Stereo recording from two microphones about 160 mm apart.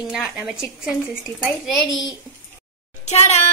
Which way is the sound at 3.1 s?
45° left (ahead or behind).